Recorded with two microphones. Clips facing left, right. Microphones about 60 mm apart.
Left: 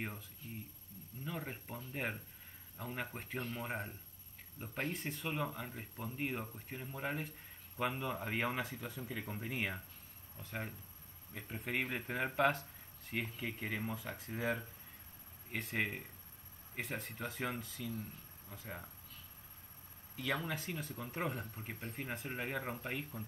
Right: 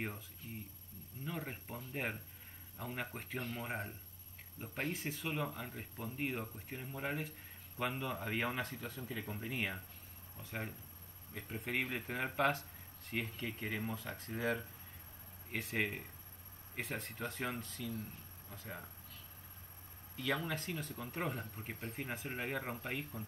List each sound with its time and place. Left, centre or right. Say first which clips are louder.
1.2 s speech: even; centre
20.2 s speech: right 1 dB; centre